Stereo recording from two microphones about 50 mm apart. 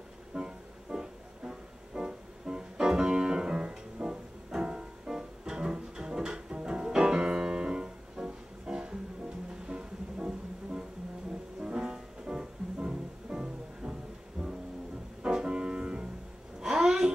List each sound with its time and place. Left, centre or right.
0.3 s music: centre
15.2 s music: centre
16.6 s a sound: centre